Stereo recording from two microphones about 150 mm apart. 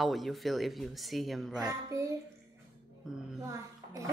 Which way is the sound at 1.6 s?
20° right (ahead or behind).